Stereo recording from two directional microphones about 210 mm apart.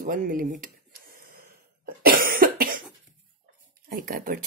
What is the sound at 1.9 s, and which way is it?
Cough, 45° right (ahead or behind).